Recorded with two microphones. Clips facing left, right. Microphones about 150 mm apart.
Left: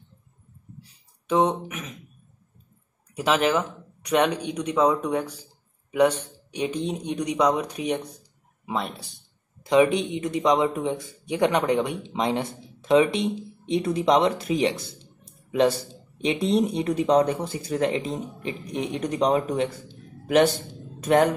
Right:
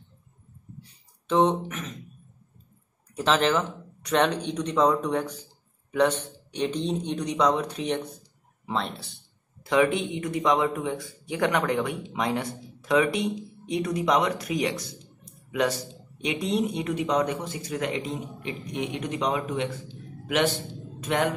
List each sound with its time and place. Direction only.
1.2 s speech: 10° left (ahead or behind)
3.2 s a man's voice: 10° left (ahead or behind); by 21.3 s 40° left (ahead or behind)